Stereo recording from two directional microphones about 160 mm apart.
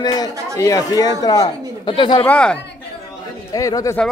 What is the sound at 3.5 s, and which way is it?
Speech, 20° left (ahead or behind).